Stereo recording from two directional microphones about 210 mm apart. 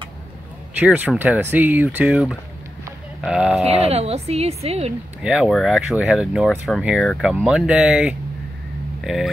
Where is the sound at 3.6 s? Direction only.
30° right (ahead or behind).